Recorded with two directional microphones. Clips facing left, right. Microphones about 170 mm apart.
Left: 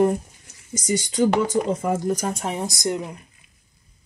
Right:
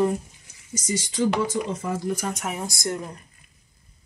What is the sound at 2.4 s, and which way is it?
Speech, 25° left (ahead or behind).